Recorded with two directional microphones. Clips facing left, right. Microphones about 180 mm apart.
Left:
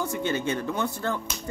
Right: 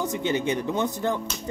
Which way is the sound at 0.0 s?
20° right (ahead or behind).